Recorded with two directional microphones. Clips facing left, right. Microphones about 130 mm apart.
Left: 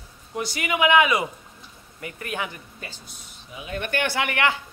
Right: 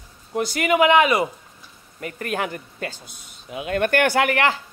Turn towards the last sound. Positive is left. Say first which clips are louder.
# right 5 dB
turn(degrees=-35)  # may be behind; listen again after turning